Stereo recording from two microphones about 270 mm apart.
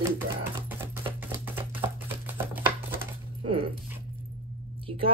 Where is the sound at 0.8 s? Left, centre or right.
Centre.